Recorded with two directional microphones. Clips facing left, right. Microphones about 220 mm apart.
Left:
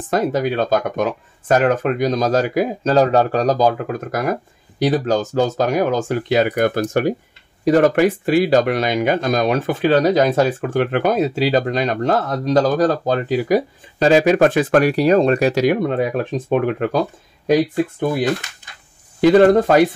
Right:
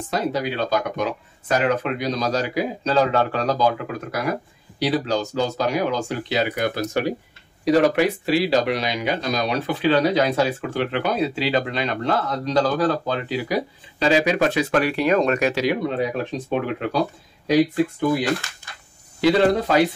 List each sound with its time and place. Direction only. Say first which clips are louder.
0.1 s speech: left 6 dB; 50° left (ahead or behind)
15.6 s speech: left 5 dB; 50° left (ahead or behind)
19.2 s speech: left 6 dB; 50° left (ahead or behind)